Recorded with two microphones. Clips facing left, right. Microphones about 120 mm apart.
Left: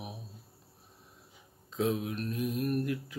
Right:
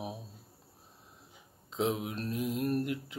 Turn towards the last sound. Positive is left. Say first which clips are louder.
# even
turn(degrees=-25)  # may be behind; listen again after turning